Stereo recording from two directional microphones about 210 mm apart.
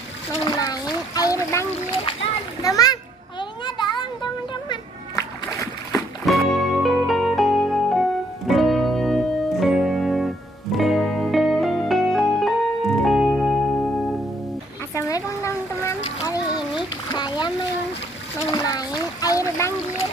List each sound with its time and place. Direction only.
0.5 s splash: 20° left (ahead or behind)
2.6 s a sound: 15° left (ahead or behind)
6.2 s music: centre (ahead or behind)
15.0 s a sound: 15° left (ahead or behind)
17.1 s splash: 20° left (ahead or behind)
18.5 s splash: 15° left (ahead or behind)